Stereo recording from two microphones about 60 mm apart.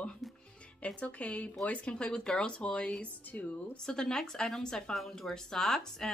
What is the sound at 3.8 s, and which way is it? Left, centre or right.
A woman's voice, centre.